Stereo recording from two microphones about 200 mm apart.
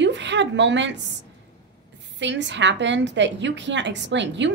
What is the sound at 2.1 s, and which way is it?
A woman's voice, 65° right (ahead or behind).